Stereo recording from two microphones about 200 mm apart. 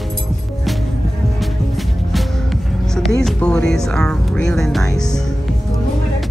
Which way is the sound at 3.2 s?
5° left (ahead or behind).